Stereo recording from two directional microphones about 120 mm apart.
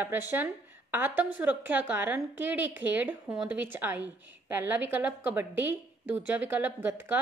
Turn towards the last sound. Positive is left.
turn(degrees=-15)  # may be behind; listen again after turning